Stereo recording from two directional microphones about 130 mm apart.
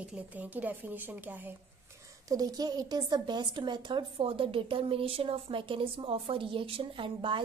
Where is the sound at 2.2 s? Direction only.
30° right (ahead or behind).